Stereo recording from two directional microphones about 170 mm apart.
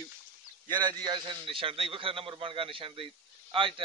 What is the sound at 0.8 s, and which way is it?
A man's voice, 25° right (ahead or behind).